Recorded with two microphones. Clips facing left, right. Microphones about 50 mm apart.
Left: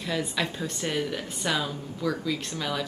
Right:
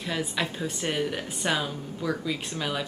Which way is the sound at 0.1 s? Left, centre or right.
Centre.